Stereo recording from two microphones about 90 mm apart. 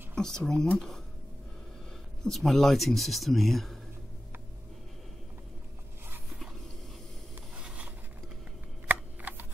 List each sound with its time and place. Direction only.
0.1 s speech: 5° left (ahead or behind)
2.2 s speech: 5° left (ahead or behind)
7.5 s a sound: 10° right (ahead or behind)
8.8 s shuffling cards: 20° right (ahead or behind)